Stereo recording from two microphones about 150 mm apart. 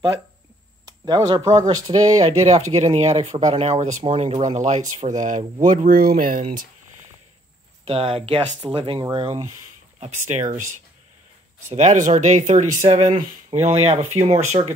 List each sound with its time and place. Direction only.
0.8 s speech: 25° right (ahead or behind)
2.5 s speech: 45° right (ahead or behind); by 6.7 s 70° right (ahead or behind)
7.8 s speech: 40° right (ahead or behind)
10.2 s speech: 55° right (ahead or behind)
11.7 s speech: 50° right (ahead or behind)